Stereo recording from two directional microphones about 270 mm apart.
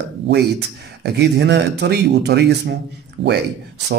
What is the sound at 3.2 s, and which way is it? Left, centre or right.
Speech, centre.